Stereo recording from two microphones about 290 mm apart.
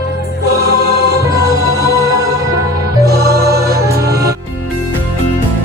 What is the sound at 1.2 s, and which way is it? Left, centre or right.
Music, centre.